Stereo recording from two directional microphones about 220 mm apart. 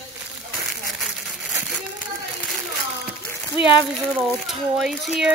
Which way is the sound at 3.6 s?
25° left (ahead or behind).